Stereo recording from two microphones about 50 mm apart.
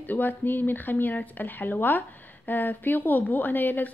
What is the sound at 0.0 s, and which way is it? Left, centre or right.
Speech, left.